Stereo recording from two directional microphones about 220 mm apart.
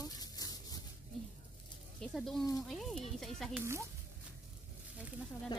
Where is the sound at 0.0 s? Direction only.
15° left (ahead or behind).